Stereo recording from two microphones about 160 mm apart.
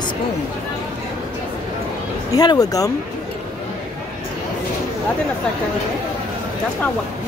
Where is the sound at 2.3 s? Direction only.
25° left (ahead or behind).